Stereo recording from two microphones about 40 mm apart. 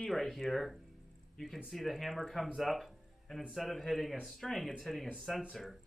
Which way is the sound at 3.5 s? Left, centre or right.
Centre.